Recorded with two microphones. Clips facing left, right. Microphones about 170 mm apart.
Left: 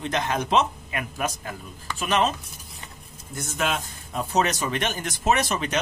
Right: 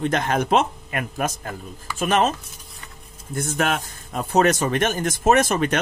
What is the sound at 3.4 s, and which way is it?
Speech, 55° right (ahead or behind).